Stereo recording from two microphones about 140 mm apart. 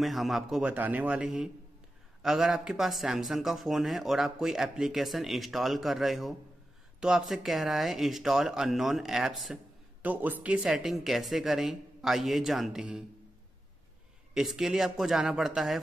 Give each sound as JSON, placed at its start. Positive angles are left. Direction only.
{"t": 0.0, "sound": "speech", "side_deg": 0}
{"t": 14.3, "sound": "speech", "side_deg": -5}